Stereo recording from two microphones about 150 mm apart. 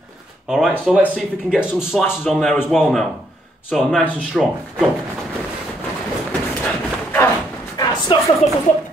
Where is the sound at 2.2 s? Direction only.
5° left (ahead or behind).